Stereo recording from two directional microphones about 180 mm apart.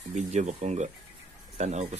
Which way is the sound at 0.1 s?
40° right (ahead or behind).